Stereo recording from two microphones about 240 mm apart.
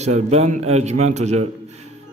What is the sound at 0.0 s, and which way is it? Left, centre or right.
A man's voice, right.